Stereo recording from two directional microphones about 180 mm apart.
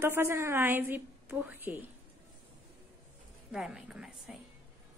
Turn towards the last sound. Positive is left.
turn(degrees=-5)  # may be behind; listen again after turning